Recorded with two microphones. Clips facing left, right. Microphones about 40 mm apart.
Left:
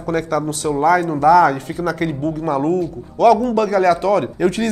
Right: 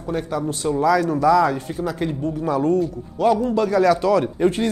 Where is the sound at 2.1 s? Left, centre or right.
Left.